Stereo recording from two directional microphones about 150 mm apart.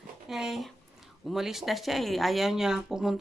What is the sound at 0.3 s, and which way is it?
Speech, centre (ahead or behind).